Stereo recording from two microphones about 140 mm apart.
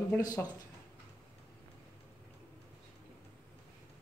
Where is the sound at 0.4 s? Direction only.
15° left (ahead or behind).